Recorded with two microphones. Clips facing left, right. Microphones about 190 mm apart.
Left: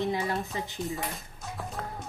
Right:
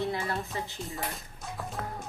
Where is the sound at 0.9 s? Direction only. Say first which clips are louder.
Left 2 dB; centre (ahead or behind).